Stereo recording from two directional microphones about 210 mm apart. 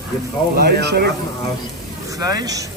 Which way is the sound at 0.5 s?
50° right (ahead or behind).